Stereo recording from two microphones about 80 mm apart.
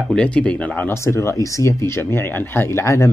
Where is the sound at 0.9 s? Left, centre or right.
Left.